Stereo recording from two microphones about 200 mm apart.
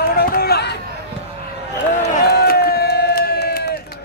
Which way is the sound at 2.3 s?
50° left (ahead or behind).